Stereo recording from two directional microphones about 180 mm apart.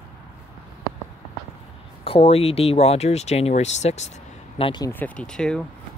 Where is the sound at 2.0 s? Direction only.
35° left (ahead or behind).